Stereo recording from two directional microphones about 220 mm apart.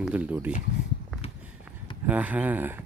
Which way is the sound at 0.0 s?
5° right (ahead or behind).